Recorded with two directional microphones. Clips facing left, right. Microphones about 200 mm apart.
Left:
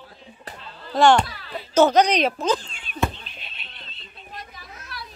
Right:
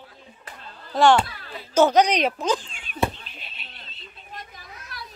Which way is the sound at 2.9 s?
45° right (ahead or behind).